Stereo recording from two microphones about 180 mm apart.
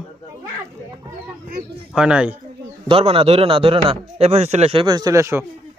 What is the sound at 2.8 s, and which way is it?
A man's voice, 30° right (ahead or behind).